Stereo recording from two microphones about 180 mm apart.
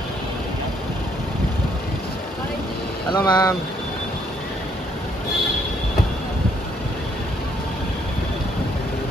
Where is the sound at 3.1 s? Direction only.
25° left (ahead or behind).